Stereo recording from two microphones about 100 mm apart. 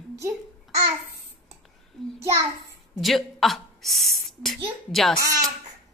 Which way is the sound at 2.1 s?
30° right (ahead or behind).